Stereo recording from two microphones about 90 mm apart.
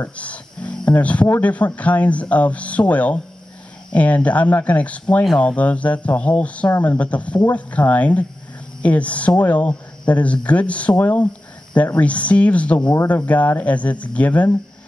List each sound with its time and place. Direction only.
0.1 s speech: 15° left (ahead or behind)